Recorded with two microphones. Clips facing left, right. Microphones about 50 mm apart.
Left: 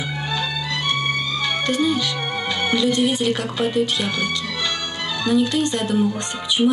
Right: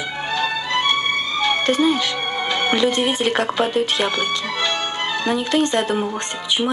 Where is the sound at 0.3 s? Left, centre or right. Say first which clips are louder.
Right 5 dB; right.